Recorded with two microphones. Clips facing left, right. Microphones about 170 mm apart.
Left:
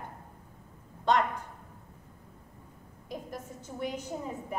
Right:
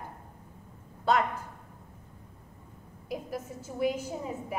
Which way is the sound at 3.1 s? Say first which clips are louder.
Right 4 dB; 5° right (ahead or behind).